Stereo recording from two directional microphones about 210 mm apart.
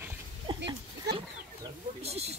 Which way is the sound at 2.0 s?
30° right (ahead or behind).